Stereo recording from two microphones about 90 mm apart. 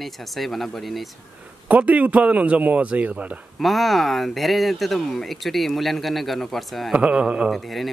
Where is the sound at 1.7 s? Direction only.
15° right (ahead or behind).